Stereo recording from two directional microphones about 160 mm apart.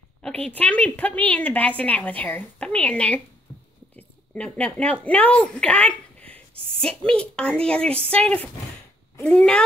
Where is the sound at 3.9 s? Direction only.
10° left (ahead or behind).